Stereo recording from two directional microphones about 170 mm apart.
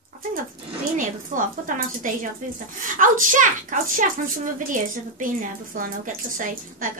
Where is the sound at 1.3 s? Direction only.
50° right (ahead or behind).